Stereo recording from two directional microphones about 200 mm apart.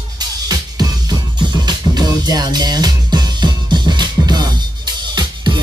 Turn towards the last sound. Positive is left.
turn(degrees=-20)  # may be behind; listen again after turning